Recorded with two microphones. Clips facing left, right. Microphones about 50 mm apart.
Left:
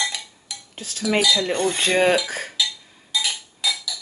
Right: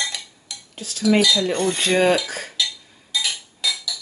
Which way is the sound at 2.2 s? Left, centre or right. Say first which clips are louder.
Left 1 dB; left.